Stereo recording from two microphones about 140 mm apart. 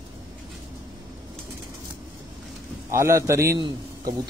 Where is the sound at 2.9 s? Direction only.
20° right (ahead or behind).